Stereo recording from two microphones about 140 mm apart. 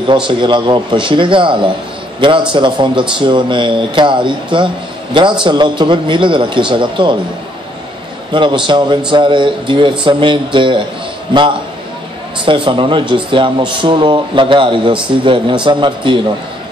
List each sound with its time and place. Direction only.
0.1 s a man's voice: 35° right (ahead or behind)
8.3 s speech: 35° right (ahead or behind)
12.4 s speech: 35° right (ahead or behind)